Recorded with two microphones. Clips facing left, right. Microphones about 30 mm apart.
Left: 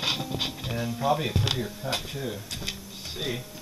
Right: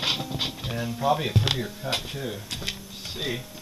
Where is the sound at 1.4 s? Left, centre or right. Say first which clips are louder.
Right 2 dB; centre.